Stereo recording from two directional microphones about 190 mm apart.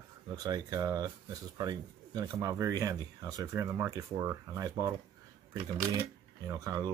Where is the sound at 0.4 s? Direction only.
20° right (ahead or behind).